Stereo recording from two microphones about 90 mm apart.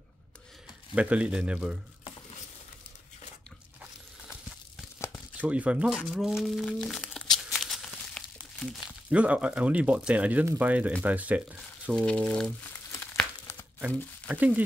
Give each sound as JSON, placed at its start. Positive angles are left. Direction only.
{"t": 0.9, "sound": "speech", "side_deg": -15}
{"t": 5.4, "sound": "speech", "side_deg": -15}
{"t": 7.3, "sound": "a sound", "side_deg": 0}
{"t": 8.4, "sound": "crumpling", "side_deg": 10}
{"t": 9.1, "sound": "speech", "side_deg": -15}
{"t": 11.9, "sound": "speech", "side_deg": 10}
{"t": 14.3, "sound": "speech", "side_deg": -15}